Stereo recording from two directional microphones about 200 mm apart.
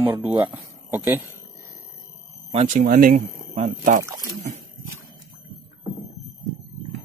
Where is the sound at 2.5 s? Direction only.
35° right (ahead or behind).